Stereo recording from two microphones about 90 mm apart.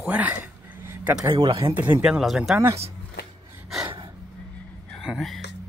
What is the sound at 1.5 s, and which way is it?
Speech, 65° right (ahead or behind).